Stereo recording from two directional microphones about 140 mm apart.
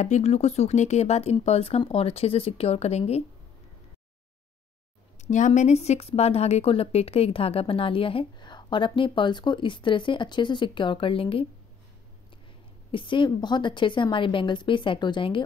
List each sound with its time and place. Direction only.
0.0 s speech: 55° left (ahead or behind)
5.2 s a woman's voice: 60° left (ahead or behind); by 11.4 s 40° left (ahead or behind)
12.9 s a woman's voice: 35° left (ahead or behind)